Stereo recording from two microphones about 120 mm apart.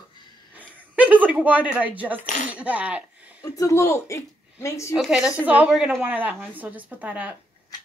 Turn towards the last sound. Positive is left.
turn(degrees=-10)  # may be behind; listen again after turning